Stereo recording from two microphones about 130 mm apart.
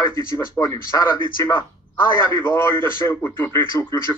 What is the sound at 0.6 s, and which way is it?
Speech, 30° left (ahead or behind).